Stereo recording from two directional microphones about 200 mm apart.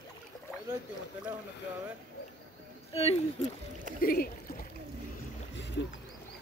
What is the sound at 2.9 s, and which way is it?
Speech, 30° left (ahead or behind).